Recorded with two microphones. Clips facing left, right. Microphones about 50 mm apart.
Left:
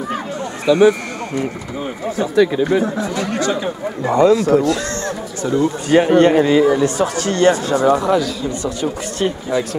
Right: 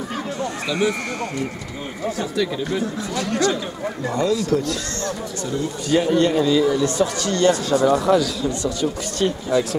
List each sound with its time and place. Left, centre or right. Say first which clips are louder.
0.1 s a sound: left 2 dB; centre
2.3 s speech: left 12 dB; left
4.0 s speech: left 9 dB; left
5.9 s a man's voice: left 6 dB; left
6.7 s speech: left 4 dB; left
7.5 s speech: left 3 dB; centre